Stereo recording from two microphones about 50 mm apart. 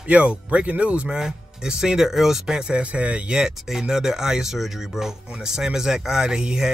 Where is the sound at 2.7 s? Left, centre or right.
Right.